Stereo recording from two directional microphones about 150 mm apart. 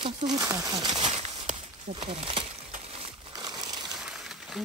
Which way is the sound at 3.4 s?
25° right (ahead or behind).